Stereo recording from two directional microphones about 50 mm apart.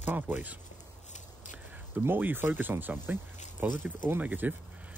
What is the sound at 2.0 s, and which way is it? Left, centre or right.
Speech, right.